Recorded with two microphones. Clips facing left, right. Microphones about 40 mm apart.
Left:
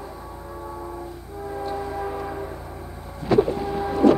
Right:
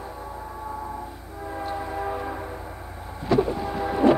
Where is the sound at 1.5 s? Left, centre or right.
Centre.